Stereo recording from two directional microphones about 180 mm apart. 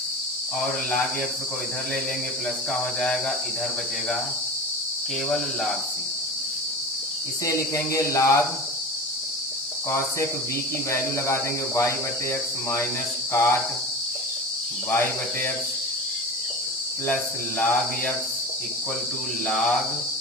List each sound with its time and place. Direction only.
2.7 s cricket: 5° left (ahead or behind)
5.3 s cricket: centre (ahead or behind)
7.4 s cricket: 15° left (ahead or behind)
9.8 s cricket: 15° left (ahead or behind)
13.3 s cricket: 15° left (ahead or behind)
14.9 s cricket: 10° left (ahead or behind)
17.1 s cricket: 10° left (ahead or behind)
19.4 s cricket: centre (ahead or behind)